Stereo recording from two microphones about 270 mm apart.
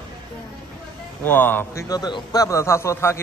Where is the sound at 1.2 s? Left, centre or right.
Centre.